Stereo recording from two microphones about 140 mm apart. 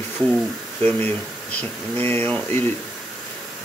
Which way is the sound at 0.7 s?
15° left (ahead or behind).